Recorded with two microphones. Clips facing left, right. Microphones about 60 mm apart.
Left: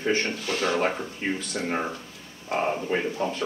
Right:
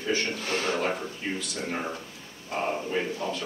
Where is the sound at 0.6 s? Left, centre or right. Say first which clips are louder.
Left 5 dB; left.